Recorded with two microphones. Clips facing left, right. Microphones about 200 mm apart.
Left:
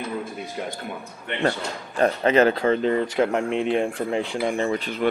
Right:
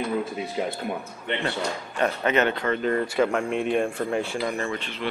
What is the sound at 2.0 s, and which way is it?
Speech, 35° left (ahead or behind).